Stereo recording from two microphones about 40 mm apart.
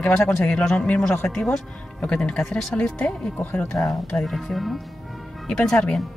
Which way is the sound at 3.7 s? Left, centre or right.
Left.